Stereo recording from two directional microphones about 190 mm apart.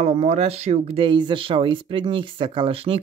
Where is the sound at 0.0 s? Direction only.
35° right (ahead or behind).